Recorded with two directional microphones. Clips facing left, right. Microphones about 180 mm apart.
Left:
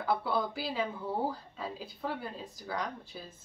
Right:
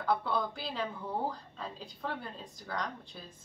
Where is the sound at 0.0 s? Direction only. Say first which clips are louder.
Left 1 dB; 5° left (ahead or behind).